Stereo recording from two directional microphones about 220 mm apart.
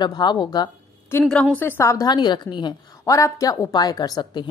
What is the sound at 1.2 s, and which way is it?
A woman's voice, 5° left (ahead or behind).